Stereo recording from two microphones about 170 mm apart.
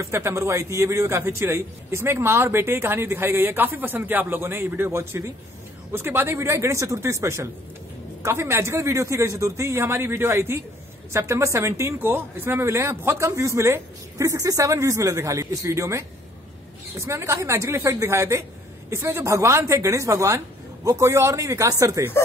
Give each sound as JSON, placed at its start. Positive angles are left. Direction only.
{"t": 0.0, "sound": "a man's voice", "side_deg": -15}